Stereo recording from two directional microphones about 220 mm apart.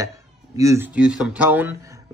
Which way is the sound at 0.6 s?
10° right (ahead or behind).